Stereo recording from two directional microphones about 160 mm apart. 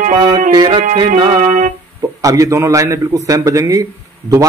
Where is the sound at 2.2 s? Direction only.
20° right (ahead or behind).